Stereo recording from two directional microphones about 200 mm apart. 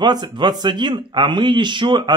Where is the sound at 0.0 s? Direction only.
20° right (ahead or behind).